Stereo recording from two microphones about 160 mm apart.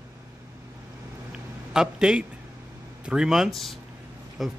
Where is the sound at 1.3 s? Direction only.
5° right (ahead or behind).